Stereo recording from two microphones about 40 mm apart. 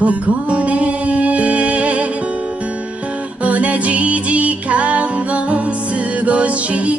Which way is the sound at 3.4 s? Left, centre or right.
Right.